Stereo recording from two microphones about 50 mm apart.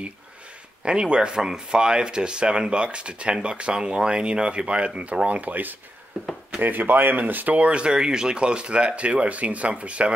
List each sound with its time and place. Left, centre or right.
0.8 s speech: centre